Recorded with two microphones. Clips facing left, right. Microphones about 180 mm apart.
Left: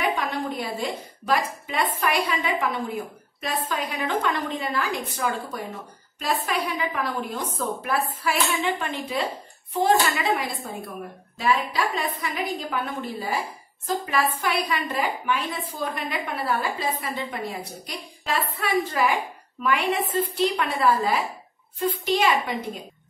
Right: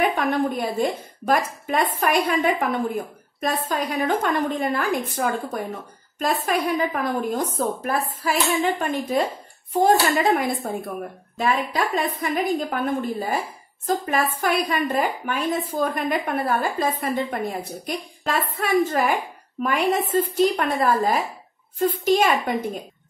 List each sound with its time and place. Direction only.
0.0 s a woman's voice: 50° right (ahead or behind)